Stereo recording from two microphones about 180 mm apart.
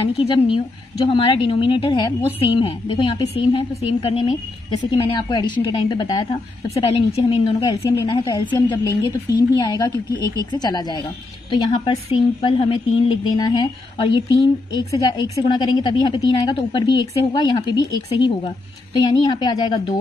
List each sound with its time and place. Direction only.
0.2 s a woman's voice: 35° left (ahead or behind)
6.7 s a woman's voice: 35° left (ahead or behind)
7.6 s a woman's voice: 15° left (ahead or behind)